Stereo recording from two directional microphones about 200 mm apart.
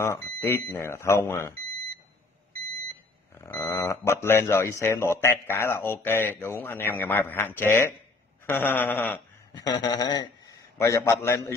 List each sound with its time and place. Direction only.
0.0 s speech: 10° left (ahead or behind)
3.3 s speech: 10° left (ahead or behind)
9.5 s a man's voice: 20° left (ahead or behind)